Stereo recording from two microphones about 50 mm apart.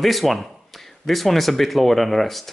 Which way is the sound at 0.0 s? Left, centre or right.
Centre.